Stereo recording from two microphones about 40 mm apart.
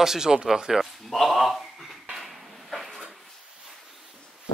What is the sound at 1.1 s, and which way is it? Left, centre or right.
Speech, centre.